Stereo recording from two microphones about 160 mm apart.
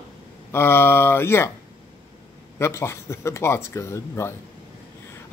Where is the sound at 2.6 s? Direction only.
15° left (ahead or behind).